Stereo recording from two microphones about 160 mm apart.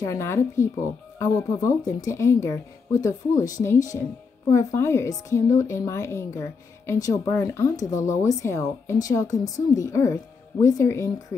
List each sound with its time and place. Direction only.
0.0 s a woman's voice: 15° left (ahead or behind)